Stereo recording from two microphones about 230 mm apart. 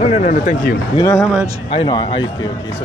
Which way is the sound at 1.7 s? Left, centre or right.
Centre.